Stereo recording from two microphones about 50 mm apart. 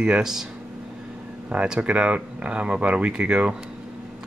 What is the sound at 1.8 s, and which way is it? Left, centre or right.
Speech, right.